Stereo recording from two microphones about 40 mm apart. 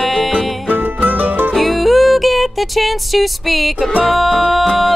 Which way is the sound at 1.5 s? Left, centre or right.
Centre.